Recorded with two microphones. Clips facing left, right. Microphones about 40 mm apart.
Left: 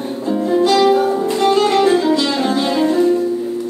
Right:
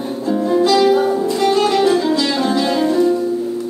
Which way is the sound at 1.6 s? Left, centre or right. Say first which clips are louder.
Left 1 dB; left.